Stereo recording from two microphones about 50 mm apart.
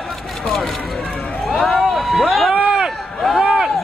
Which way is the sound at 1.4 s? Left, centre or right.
Centre.